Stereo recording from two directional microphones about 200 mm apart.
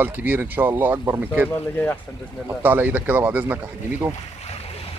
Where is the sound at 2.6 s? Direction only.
10° right (ahead or behind).